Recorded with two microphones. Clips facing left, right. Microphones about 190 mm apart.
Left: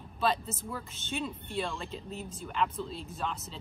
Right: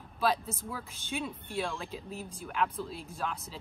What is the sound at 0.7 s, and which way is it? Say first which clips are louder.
Speech: left 1 dB; centre (ahead or behind).